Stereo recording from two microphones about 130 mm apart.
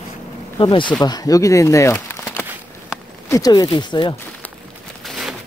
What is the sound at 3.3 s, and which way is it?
Speech, 30° left (ahead or behind).